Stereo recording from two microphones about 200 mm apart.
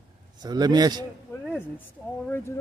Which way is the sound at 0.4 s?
20° right (ahead or behind).